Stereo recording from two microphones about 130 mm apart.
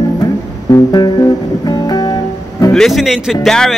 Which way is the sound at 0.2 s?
25° left (ahead or behind).